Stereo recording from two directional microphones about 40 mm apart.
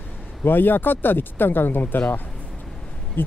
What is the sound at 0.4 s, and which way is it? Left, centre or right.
Speech, left.